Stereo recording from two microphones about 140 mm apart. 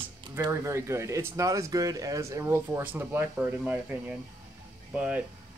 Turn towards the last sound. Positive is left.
turn(degrees=-10)  # may be behind; listen again after turning